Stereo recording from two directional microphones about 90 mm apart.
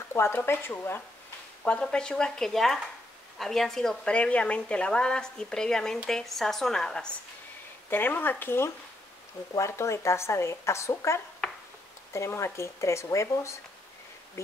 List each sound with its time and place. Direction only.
0.1 s speech: 25° left (ahead or behind)
1.6 s a woman's voice: 10° left (ahead or behind)
7.9 s speech: 20° left (ahead or behind)
11.4 s a sound: 5° left (ahead or behind)
12.1 s speech: 35° left (ahead or behind)